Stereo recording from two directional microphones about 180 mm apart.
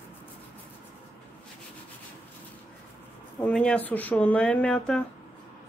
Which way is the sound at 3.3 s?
5° left (ahead or behind).